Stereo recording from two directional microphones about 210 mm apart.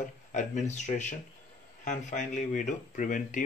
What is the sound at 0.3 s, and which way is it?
Speech, 35° left (ahead or behind).